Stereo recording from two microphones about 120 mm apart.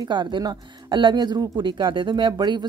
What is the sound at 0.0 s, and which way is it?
A woman's voice, 40° right (ahead or behind).